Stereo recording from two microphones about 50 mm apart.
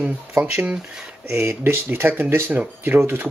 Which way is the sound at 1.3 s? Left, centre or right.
Right.